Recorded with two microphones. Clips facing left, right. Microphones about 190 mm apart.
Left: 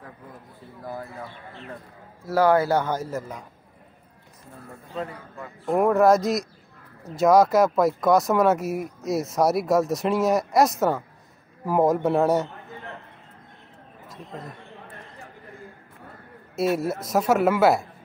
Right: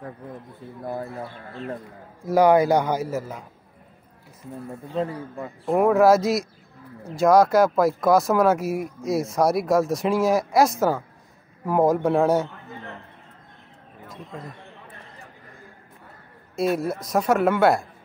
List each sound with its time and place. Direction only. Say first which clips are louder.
2.2 s speech: right 3 dB; 15° right (ahead or behind)
4.9 s a man's voice: right 6 dB; 25° right (ahead or behind)
5.7 s speech: right 1 dB; centre (ahead or behind)
16.5 s speech: even; centre (ahead or behind)